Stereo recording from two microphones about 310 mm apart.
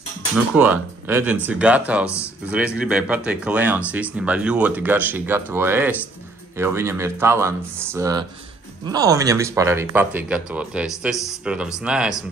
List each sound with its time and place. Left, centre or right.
0.6 s speech: centre
2.0 s speech: centre
2.5 s speech: centre